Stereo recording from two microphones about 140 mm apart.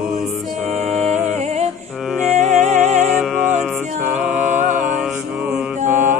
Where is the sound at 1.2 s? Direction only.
55° right (ahead or behind).